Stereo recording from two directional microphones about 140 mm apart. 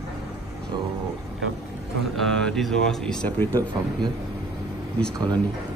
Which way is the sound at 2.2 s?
5° left (ahead or behind).